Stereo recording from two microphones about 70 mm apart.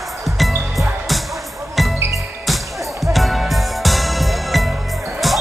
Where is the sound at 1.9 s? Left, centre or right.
Right.